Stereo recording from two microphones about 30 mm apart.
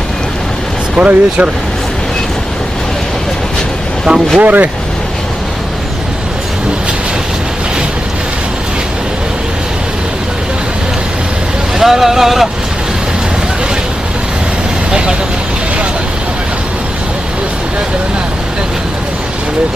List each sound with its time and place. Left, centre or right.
0.9 s speech: right
4.4 s speech: right
11.8 s speech: centre
14.9 s speech: right